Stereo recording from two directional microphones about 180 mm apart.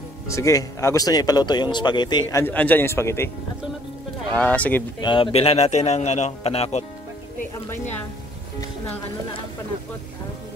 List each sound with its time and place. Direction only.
0.3 s speech: 15° left (ahead or behind)
2.4 s a man's voice: 10° left (ahead or behind)
4.4 s a man's voice: 10° left (ahead or behind)
5.0 s a man's voice: 30° left (ahead or behind)